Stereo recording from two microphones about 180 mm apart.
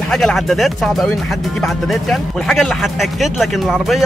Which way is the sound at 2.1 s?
Centre (ahead or behind).